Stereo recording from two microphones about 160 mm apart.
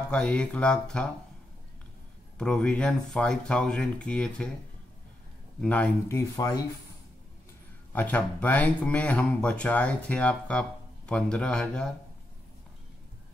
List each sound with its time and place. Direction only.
0.1 s speech: 5° left (ahead or behind)
2.3 s speech: 5° left (ahead or behind)
5.6 s speech: 10° left (ahead or behind)
7.9 s speech: 10° left (ahead or behind)